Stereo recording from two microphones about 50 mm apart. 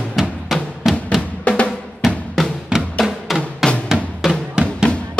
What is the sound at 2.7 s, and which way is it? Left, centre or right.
Music, right.